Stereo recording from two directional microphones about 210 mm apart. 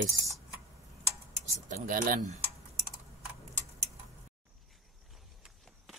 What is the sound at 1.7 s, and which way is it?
Speech, 40° right (ahead or behind).